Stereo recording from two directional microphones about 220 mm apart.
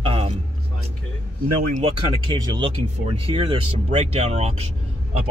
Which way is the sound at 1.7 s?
25° right (ahead or behind).